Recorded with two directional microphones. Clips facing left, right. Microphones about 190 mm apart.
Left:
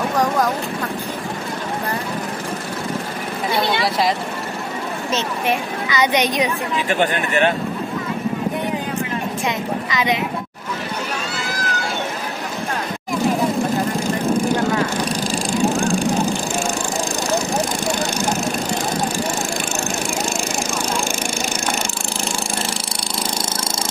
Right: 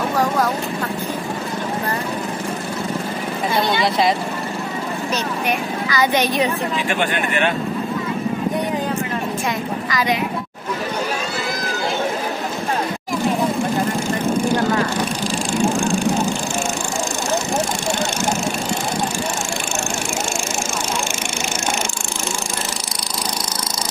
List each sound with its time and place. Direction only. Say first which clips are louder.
5.1 s speech: left 2 dB; 20° left (ahead or behind)
6.9 s speech: left 4 dB; 40° left (ahead or behind)
9.8 s speech: right 1 dB; 20° left (ahead or behind)